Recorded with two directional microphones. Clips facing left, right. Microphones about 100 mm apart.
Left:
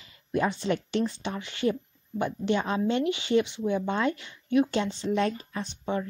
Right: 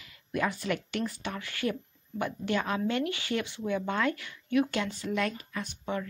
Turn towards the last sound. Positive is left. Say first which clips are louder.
# left 3 dB
turn(degrees=30)  # may be behind; listen again after turning